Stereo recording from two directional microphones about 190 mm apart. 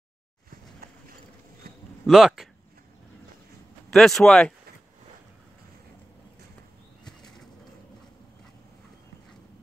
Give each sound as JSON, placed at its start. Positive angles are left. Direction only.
{"t": 0.5, "sound": "a sound", "side_deg": -50}
{"t": 2.0, "sound": "speech", "side_deg": 0}
{"t": 3.9, "sound": "speech", "side_deg": 0}
{"t": 7.1, "sound": "bird", "side_deg": 5}